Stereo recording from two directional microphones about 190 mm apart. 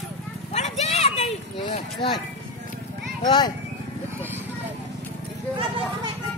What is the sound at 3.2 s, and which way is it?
Speech, 20° left (ahead or behind).